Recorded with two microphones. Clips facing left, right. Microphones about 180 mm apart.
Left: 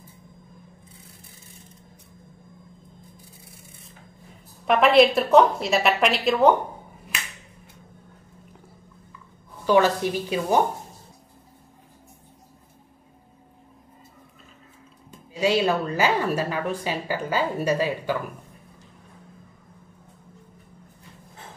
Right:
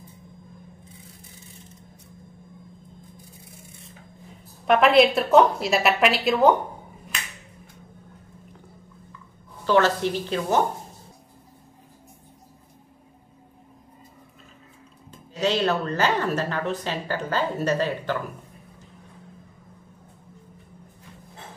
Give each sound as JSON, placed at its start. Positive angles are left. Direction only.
{"t": 4.6, "sound": "a woman's voice", "side_deg": 0}
{"t": 9.7, "sound": "speech", "side_deg": 15}
{"t": 15.4, "sound": "speech", "side_deg": 10}